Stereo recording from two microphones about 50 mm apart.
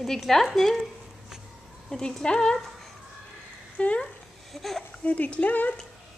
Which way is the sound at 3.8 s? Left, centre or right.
Left.